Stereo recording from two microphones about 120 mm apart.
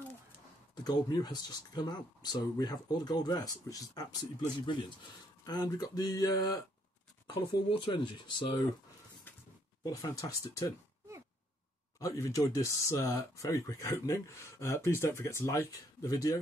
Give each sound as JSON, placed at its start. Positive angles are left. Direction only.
{"t": 0.8, "sound": "speech", "side_deg": 35}
{"t": 7.7, "sound": "speech", "side_deg": 40}
{"t": 9.3, "sound": "a sound", "side_deg": 15}
{"t": 9.8, "sound": "speech", "side_deg": 30}
{"t": 12.0, "sound": "speech", "side_deg": 25}